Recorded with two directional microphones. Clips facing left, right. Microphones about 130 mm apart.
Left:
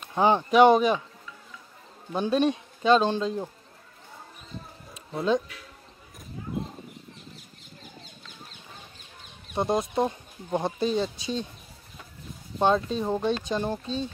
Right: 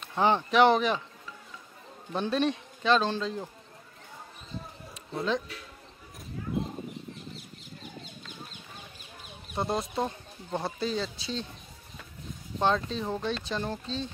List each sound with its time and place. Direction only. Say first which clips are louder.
0.1 s speech: left 4 dB; 15° left (ahead or behind)
2.1 s speech: left 4 dB; 15° left (ahead or behind)
5.1 s speech: left 5 dB; 15° left (ahead or behind)
9.6 s speech: left 5 dB; 20° left (ahead or behind)
12.5 s speech: left 4 dB; 15° left (ahead or behind)